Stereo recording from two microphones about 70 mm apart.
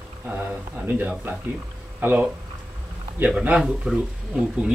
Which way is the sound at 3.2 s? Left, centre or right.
Centre.